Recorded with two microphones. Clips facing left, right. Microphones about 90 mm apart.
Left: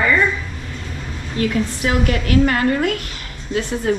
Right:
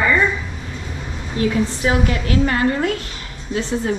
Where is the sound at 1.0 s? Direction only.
10° right (ahead or behind).